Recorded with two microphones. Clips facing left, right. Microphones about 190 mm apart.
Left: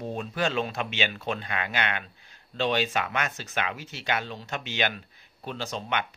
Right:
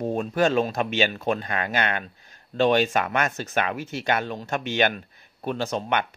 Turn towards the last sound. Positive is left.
turn(degrees=-50)  # may be behind; listen again after turning